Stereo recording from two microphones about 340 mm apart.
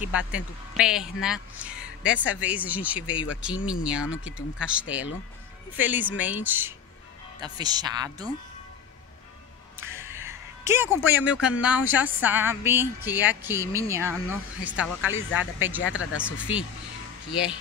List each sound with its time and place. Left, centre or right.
0.3 s a woman's voice: centre
9.8 s music: centre
11.1 s a woman's voice: centre
15.8 s speech: left
16.2 s a woman's voice: centre